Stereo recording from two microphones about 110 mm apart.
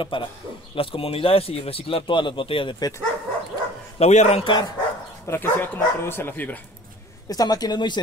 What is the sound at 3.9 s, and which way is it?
Speech, 85° left.